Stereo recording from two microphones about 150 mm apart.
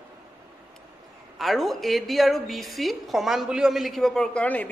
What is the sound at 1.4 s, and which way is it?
A woman's voice, centre (ahead or behind).